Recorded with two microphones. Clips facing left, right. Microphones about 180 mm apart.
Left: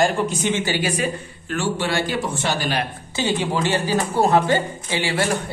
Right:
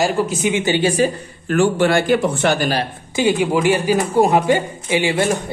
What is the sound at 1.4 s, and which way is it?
A man's voice, 50° right (ahead or behind).